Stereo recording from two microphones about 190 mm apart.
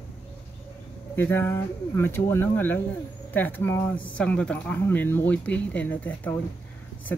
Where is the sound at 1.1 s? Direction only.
10° left (ahead or behind).